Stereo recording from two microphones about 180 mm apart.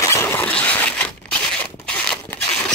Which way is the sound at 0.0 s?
15° left (ahead or behind).